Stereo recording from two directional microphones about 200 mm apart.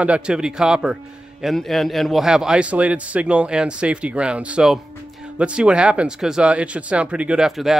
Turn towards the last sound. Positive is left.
turn(degrees=0)  # may be behind; listen again after turning